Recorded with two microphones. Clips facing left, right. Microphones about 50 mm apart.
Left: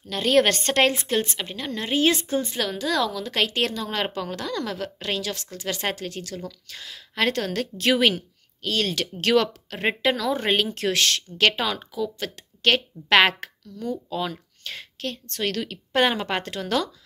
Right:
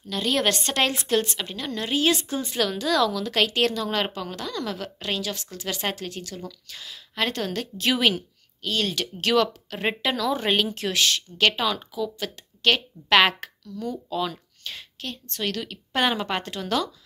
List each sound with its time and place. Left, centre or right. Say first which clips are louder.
0.1 s speech: left 4 dB; left
0.9 s speech: right 1 dB; left
4.1 s a woman's voice: left 3 dB; left